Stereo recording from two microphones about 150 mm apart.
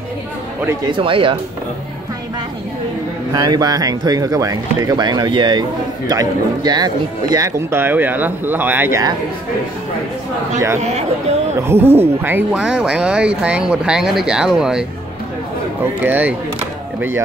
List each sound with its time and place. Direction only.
0.8 s speech: 35° right (ahead or behind)
3.3 s speech: 25° right (ahead or behind)
10.8 s speech: 45° right (ahead or behind)
11.7 s speech: 15° right (ahead or behind)